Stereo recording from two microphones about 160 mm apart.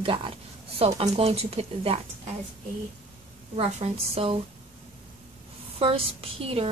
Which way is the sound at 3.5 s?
35° right (ahead or behind).